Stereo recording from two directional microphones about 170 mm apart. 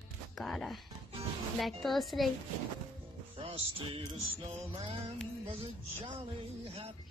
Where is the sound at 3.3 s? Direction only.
35° right (ahead or behind).